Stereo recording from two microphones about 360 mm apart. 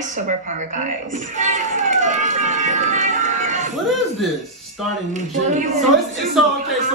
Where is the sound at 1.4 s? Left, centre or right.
Right.